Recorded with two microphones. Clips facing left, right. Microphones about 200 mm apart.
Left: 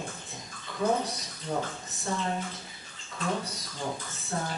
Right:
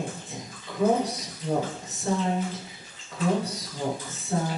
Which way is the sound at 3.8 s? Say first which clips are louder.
Right 5 dB; 15° right (ahead or behind).